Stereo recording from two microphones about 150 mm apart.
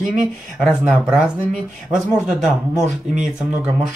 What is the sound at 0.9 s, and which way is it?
A man's voice, 5° right (ahead or behind).